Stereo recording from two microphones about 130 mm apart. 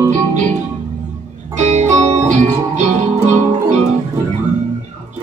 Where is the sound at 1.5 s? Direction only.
60° right (ahead or behind).